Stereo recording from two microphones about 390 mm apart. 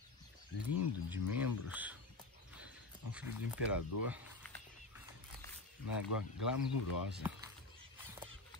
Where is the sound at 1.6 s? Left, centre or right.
Centre.